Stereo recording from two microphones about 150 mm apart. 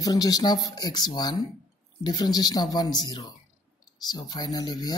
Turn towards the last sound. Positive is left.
turn(degrees=25)  # may be behind; listen again after turning